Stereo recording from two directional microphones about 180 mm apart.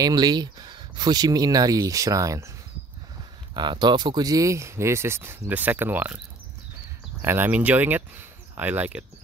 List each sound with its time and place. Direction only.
0.0 s speech: 20° right (ahead or behind)
3.5 s speech: 25° right (ahead or behind); by 9.0 s 10° right (ahead or behind)